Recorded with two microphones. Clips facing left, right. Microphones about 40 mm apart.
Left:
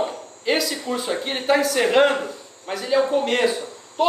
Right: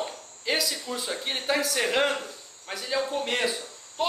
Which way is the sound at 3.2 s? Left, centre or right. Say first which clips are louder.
Left 7 dB; centre.